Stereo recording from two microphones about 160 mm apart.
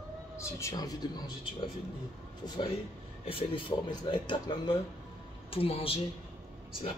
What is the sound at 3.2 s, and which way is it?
Speech, 30° left (ahead or behind).